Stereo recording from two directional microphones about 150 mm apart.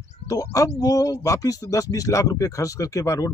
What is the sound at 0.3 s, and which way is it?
A man's voice, 25° left (ahead or behind).